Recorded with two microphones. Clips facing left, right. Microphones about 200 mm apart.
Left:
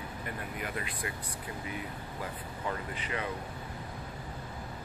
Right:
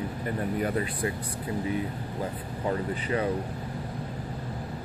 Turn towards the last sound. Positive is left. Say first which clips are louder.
# right 9 dB
turn(degrees=-35)  # may be behind; listen again after turning